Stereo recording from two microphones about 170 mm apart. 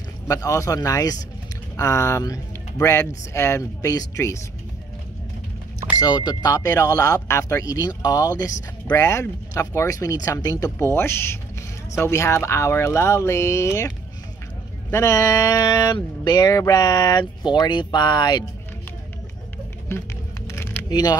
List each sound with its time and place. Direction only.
0.3 s speech: 20° left (ahead or behind)
5.9 s speech: 25° left (ahead or behind)
20.4 s a sound: 15° left (ahead or behind)